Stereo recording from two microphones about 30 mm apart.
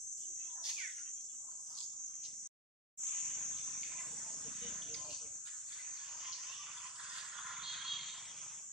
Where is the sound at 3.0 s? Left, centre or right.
Centre.